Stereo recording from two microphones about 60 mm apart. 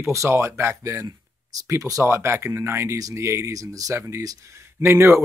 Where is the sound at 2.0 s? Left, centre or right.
Right.